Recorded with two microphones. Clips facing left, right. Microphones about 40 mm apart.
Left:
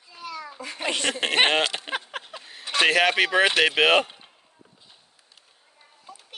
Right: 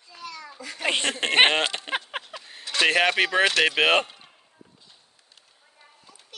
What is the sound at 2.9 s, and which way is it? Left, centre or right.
Speech, centre.